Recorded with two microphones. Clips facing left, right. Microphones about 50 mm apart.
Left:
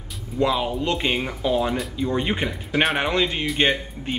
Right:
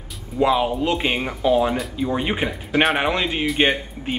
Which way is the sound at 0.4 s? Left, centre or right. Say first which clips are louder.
Right 3 dB; centre.